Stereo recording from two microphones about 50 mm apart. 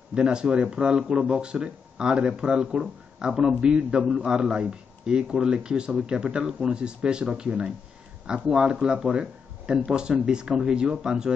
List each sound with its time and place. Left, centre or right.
0.1 s speech: centre